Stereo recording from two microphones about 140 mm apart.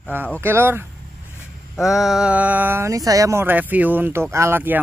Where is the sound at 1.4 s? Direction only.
5° right (ahead or behind).